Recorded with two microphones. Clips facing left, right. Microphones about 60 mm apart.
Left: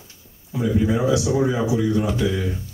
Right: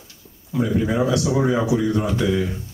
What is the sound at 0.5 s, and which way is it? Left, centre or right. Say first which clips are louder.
Speech: even; right.